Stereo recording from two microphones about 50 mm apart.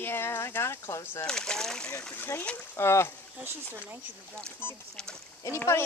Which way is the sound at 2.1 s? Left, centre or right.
Left.